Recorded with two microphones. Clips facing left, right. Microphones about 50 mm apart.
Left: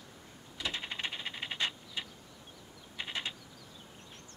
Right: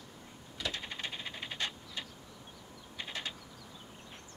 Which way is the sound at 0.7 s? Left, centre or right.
Left.